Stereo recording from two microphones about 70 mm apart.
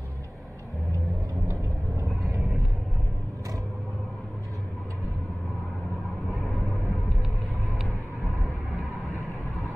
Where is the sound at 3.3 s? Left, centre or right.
Right.